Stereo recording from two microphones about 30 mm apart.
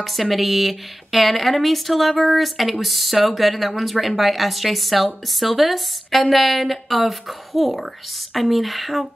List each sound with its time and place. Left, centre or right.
0.0 s speech: centre